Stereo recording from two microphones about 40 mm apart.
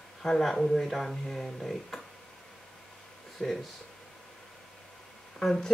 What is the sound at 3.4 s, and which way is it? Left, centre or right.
Speech, centre.